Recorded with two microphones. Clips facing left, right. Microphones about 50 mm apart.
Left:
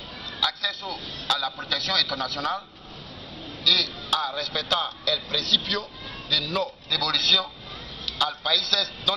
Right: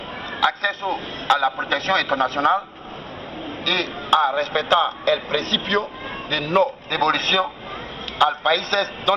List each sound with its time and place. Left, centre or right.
0.4 s a man's voice: right
3.6 s a man's voice: right